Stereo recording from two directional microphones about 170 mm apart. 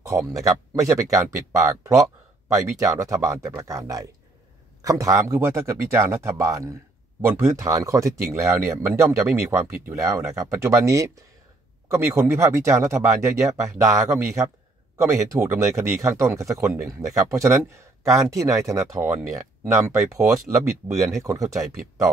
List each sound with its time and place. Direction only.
0.3 s speech: 20° right (ahead or behind)